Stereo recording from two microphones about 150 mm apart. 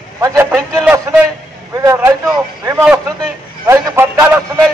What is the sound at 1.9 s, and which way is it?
A man's voice, 20° right (ahead or behind).